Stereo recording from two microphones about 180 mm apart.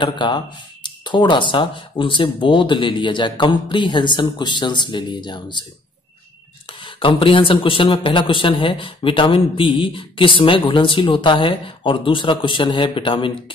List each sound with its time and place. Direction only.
0.0 s a man's voice: 25° left (ahead or behind)
6.8 s a man's voice: 30° left (ahead or behind)